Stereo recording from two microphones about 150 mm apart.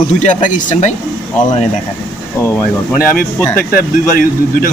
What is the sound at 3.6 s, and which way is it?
Speech, 75° left (ahead or behind).